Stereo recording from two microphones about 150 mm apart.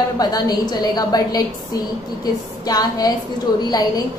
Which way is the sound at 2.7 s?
25° left (ahead or behind).